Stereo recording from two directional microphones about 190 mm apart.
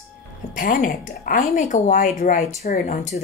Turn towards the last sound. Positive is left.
turn(degrees=45)  # may be behind; listen again after turning